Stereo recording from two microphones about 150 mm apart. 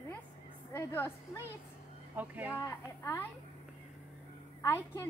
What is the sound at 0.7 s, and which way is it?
Speech, 15° left (ahead or behind).